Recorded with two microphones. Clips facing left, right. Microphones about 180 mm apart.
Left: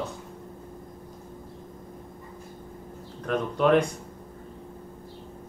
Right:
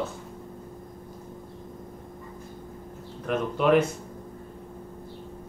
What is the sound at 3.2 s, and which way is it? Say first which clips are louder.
Speech: left 1 dB; 5° right (ahead or behind).